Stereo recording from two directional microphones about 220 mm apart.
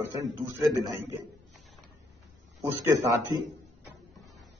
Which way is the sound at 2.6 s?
15° right (ahead or behind).